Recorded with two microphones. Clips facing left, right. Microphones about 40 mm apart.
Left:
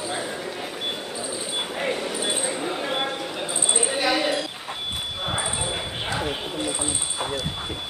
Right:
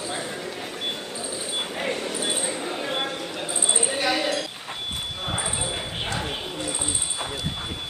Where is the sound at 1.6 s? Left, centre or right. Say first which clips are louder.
Left 1 dB; centre.